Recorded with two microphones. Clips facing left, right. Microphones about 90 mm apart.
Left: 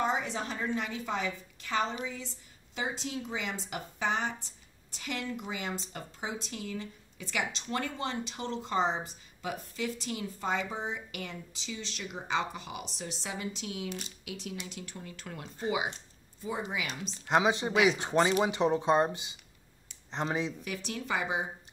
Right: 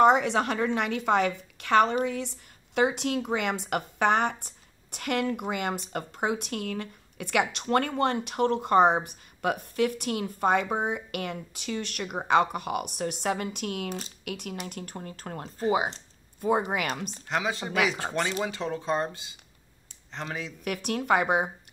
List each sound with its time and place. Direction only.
0.0 s a woman's voice: 70° right (ahead or behind); by 16.0 s 40° right (ahead or behind)
16.3 s a woman's voice: 55° right (ahead or behind)
17.3 s speech: 20° left (ahead or behind)
20.6 s a woman's voice: 60° right (ahead or behind)